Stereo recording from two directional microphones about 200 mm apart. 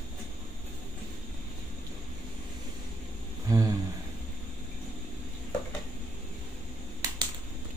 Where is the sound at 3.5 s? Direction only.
15° right (ahead or behind).